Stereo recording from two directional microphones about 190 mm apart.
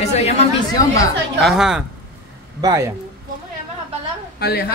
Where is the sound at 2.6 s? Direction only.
15° right (ahead or behind).